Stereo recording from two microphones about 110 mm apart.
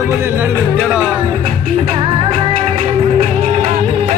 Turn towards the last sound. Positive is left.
turn(degrees=-60)  # may be behind; listen again after turning